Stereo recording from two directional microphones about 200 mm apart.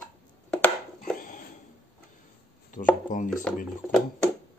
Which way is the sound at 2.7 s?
40° left (ahead or behind).